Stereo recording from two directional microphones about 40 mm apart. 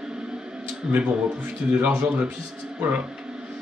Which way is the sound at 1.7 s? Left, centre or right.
Right.